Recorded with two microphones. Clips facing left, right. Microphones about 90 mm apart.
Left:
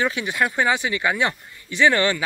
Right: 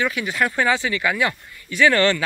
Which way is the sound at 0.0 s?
25° left (ahead or behind).